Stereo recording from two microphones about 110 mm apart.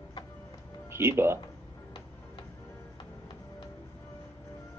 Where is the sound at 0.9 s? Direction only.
20° right (ahead or behind).